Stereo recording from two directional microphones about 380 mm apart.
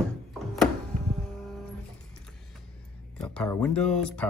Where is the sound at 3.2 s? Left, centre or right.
Centre.